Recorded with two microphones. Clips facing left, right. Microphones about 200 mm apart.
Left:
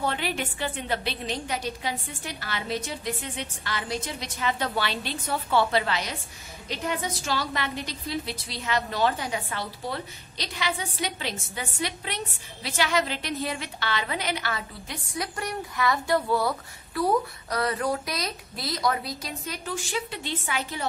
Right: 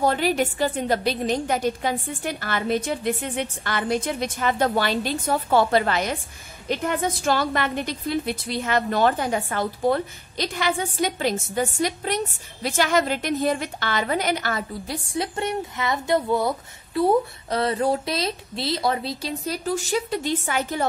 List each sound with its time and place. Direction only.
0.0 s a woman's voice: 40° right (ahead or behind)
15.1 s speech: 25° right (ahead or behind); by 20.8 s 45° right (ahead or behind)